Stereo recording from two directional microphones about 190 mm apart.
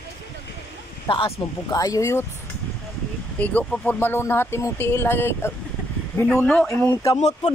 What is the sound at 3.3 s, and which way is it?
Speech, 5° left (ahead or behind).